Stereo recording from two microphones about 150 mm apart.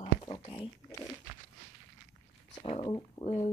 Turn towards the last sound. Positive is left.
turn(degrees=40)  # may be behind; listen again after turning